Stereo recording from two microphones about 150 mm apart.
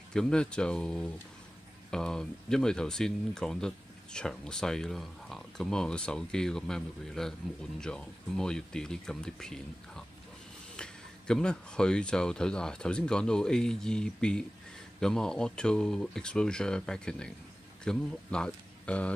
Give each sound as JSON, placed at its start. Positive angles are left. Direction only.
{"t": 0.1, "sound": "speech", "side_deg": 5}